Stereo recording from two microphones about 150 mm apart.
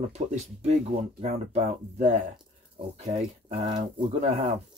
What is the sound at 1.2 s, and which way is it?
Speech, 50° right (ahead or behind).